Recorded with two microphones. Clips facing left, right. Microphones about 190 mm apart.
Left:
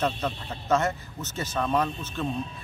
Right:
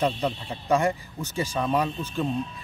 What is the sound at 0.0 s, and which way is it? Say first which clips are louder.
Speech: right 2 dB; 15° right (ahead or behind).